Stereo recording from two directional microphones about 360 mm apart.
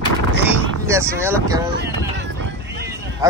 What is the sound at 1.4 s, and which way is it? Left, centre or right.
Speech, centre.